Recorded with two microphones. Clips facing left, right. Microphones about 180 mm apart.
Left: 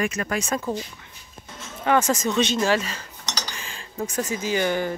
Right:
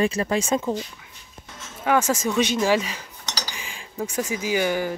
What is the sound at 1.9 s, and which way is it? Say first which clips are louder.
Speech: even; 10° right (ahead or behind).